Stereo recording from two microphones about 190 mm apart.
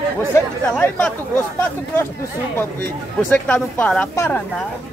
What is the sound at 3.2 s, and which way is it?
Speech, 10° left (ahead or behind).